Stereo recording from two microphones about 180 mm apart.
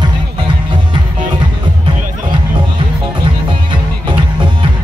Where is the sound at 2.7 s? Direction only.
25° right (ahead or behind).